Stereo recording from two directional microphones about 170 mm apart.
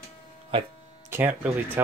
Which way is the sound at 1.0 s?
15° right (ahead or behind).